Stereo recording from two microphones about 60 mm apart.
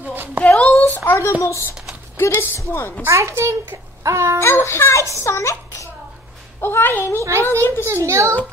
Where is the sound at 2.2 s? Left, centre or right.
Left.